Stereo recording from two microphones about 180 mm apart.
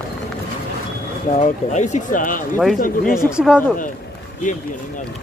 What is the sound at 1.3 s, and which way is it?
Speech, 40° left (ahead or behind).